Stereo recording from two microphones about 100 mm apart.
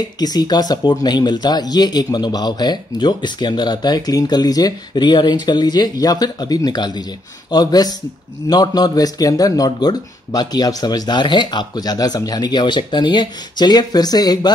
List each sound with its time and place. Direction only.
0.2 s speech: 40° left (ahead or behind)